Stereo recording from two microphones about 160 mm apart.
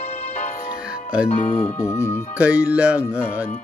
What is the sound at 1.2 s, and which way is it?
Speech, 45° left (ahead or behind).